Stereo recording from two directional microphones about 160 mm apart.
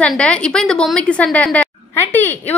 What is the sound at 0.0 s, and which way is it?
A woman's voice, 5° left (ahead or behind).